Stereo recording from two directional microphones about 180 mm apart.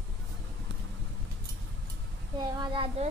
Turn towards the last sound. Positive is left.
turn(degrees=-30)  # may be behind; listen again after turning